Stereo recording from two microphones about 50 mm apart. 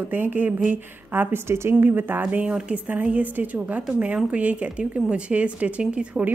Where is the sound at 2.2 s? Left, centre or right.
Right.